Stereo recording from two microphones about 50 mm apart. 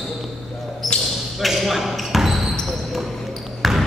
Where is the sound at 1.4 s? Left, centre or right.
Centre.